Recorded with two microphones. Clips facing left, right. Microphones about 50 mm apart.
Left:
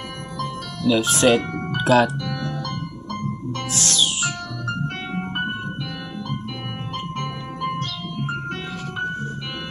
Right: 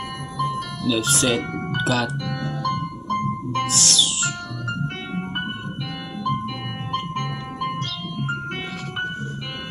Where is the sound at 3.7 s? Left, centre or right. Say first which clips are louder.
Even; left.